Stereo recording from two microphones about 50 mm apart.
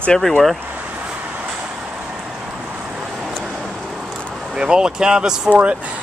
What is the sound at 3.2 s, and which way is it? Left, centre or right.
Vehicle, centre.